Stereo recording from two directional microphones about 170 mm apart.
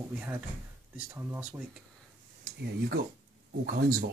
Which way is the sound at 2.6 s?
70° right (ahead or behind).